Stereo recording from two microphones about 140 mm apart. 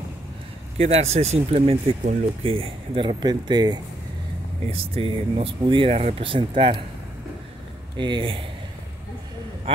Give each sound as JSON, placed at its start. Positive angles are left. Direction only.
{"t": 0.7, "sound": "speech", "side_deg": -50}
{"t": 8.0, "sound": "speech", "side_deg": -35}